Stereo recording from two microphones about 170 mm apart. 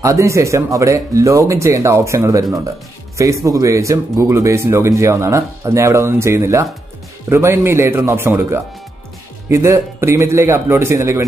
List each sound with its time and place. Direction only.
0.0 s speech: 20° right (ahead or behind)